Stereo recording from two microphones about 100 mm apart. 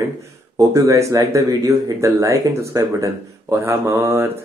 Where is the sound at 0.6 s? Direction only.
30° right (ahead or behind).